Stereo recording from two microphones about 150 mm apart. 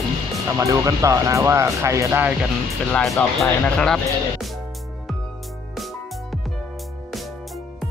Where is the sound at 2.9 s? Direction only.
10° left (ahead or behind).